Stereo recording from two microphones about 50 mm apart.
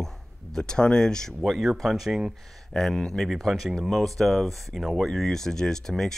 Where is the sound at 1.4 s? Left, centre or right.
Centre.